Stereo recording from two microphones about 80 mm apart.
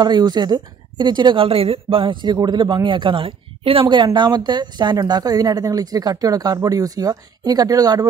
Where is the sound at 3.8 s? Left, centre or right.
Right.